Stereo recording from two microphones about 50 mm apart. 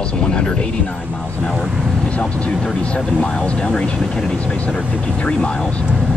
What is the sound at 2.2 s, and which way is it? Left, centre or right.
Speech, left.